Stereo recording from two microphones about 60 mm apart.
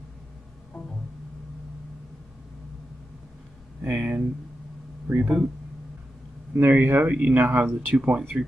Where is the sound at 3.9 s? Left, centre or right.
Centre.